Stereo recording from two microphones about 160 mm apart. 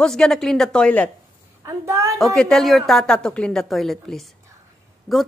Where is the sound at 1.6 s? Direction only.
20° right (ahead or behind).